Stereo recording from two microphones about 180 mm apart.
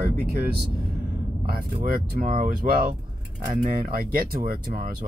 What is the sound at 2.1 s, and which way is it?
Speech, 45° right (ahead or behind).